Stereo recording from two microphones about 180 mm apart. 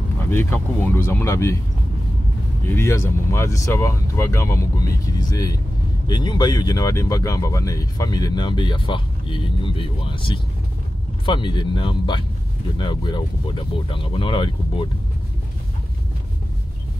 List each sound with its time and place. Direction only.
0.2 s speech: 10° left (ahead or behind)
2.7 s speech: 15° left (ahead or behind)